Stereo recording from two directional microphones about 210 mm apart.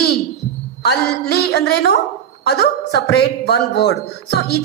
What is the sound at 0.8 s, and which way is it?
A woman's voice, 50° left (ahead or behind).